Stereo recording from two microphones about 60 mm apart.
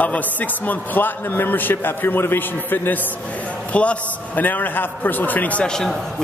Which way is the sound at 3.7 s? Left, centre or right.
Left.